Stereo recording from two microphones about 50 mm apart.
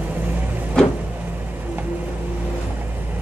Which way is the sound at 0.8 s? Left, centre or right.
Centre.